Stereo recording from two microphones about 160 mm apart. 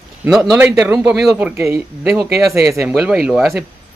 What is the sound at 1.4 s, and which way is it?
Speech, 20° right (ahead or behind).